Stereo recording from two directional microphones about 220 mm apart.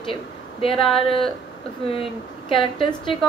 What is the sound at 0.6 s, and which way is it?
Speech, 25° left (ahead or behind).